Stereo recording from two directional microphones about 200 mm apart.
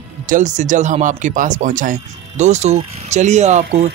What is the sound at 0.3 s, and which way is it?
Speech, 35° right (ahead or behind).